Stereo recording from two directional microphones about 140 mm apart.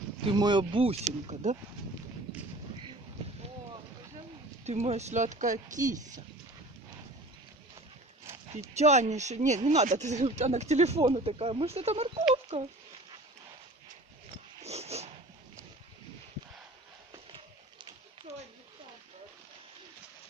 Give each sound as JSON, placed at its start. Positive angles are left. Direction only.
{"t": 0.2, "sound": "speech", "side_deg": -35}
{"t": 1.2, "sound": "speech", "side_deg": -55}
{"t": 4.6, "sound": "speech", "side_deg": -50}
{"t": 8.7, "sound": "speech", "side_deg": -55}
{"t": 14.6, "sound": "dog", "side_deg": -50}
{"t": 17.1, "sound": "a sound", "side_deg": -35}